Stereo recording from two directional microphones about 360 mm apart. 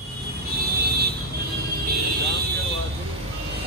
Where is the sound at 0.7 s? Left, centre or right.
Right.